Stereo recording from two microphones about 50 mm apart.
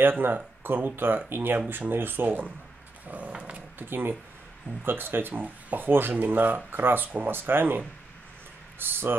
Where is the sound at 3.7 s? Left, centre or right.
Right.